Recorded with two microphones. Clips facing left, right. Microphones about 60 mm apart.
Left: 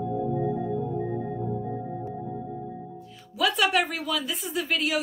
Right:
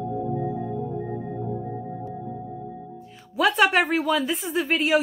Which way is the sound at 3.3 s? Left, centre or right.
Right.